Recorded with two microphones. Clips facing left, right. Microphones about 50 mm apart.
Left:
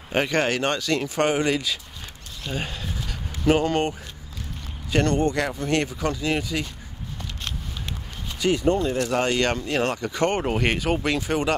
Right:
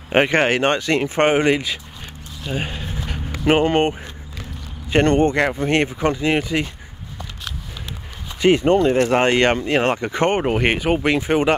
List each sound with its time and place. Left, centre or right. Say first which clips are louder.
0.1 s speech: right 6 dB; right
2.4 s a sound: right 4 dB; centre
4.8 s speech: right 6 dB; right
8.4 s speech: right 6 dB; right